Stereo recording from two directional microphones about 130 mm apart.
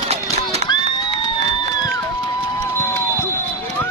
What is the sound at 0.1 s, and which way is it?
Run, 55° right (ahead or behind).